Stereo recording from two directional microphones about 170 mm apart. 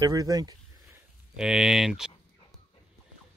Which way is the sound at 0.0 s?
20° right (ahead or behind).